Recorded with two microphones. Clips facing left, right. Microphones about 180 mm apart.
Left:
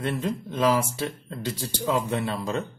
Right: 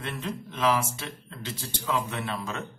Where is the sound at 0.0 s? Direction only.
35° left (ahead or behind).